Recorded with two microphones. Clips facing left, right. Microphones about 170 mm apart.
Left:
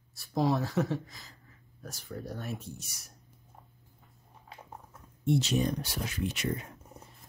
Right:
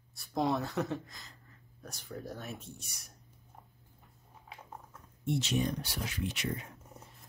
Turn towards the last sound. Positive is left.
turn(degrees=45)  # may be behind; listen again after turning